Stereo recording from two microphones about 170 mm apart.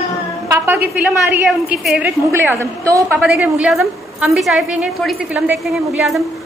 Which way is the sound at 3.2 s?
5° right (ahead or behind).